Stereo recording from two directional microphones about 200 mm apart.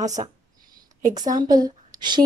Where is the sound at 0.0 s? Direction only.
35° right (ahead or behind).